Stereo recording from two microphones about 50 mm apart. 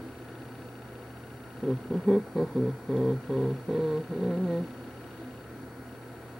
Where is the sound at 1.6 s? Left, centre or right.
Centre.